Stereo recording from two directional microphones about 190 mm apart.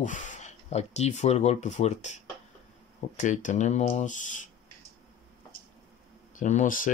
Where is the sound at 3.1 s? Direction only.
40° left (ahead or behind).